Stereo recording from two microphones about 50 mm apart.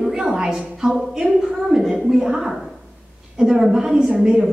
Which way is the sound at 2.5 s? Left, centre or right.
Centre.